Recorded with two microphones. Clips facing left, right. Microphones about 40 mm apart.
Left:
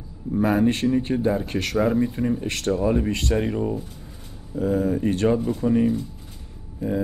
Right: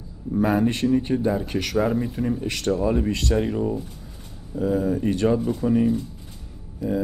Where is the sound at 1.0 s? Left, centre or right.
Left.